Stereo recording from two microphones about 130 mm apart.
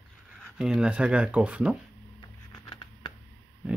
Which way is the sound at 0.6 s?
5° right (ahead or behind).